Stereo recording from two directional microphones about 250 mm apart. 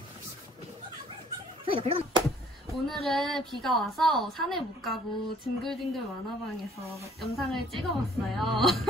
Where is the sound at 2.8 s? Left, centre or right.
Centre.